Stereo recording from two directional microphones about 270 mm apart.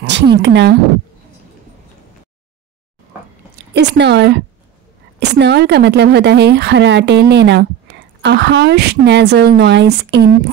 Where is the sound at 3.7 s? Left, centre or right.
Right.